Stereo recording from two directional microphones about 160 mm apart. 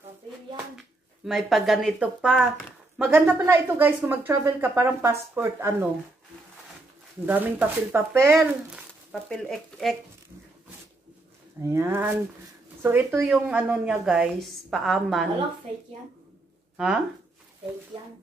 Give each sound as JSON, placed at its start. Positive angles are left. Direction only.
{"t": 0.7, "sound": "speech", "side_deg": 0}
{"t": 7.2, "sound": "speech", "side_deg": -10}
{"t": 9.1, "sound": "speech", "side_deg": 5}
{"t": 11.6, "sound": "speech", "side_deg": -15}
{"t": 16.7, "sound": "speech", "side_deg": -5}